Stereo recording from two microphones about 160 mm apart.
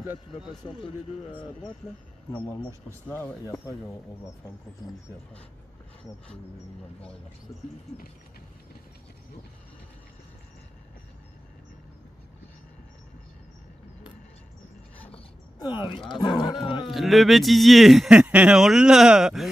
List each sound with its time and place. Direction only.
0.7 s speech: 30° left (ahead or behind)
2.3 s speech: 10° left (ahead or behind)
15.1 s a sound: 30° left (ahead or behind)
15.9 s speech: 30° left (ahead or behind)
16.9 s speech: centre (ahead or behind)